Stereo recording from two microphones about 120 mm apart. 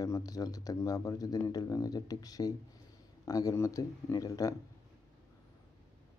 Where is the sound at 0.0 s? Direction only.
30° left (ahead or behind).